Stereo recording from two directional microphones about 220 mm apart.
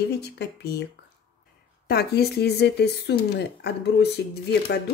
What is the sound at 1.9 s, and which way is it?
Speech, 45° left (ahead or behind).